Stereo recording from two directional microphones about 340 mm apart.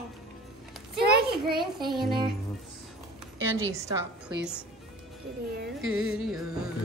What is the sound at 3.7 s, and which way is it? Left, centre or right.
Speech, centre.